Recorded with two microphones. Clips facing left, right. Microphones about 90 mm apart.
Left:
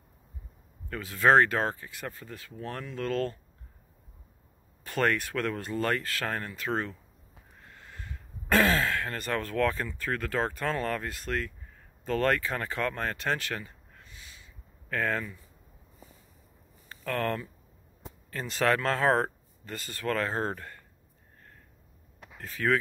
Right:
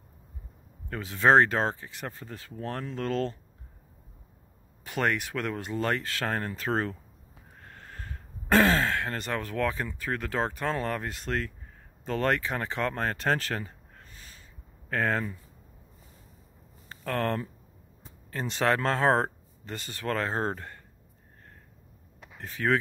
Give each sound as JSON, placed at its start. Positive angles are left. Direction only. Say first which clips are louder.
{"t": 0.8, "sound": "speech", "louder": "right 1 dB", "side_deg": -25}
{"t": 4.8, "sound": "speech", "louder": "left 1 dB", "side_deg": -15}
{"t": 7.6, "sound": "a sound", "louder": "right 2 dB", "side_deg": -45}
{"t": 8.5, "sound": "speech", "louder": "right 2 dB", "side_deg": -25}
{"t": 14.9, "sound": "speech", "louder": "right 2 dB", "side_deg": -30}
{"t": 16.9, "sound": "speech", "louder": "right 1 dB", "side_deg": -30}
{"t": 22.4, "sound": "speech", "louder": "even", "side_deg": -25}